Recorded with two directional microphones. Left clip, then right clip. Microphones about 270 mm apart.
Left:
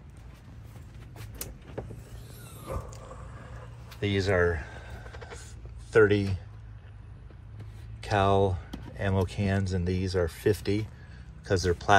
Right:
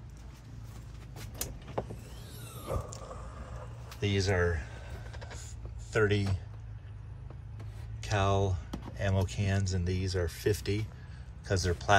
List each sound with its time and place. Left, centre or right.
1.1 s vehicle: centre
3.5 s fowl: centre
5.4 s a sound: centre
8.0 s speech: centre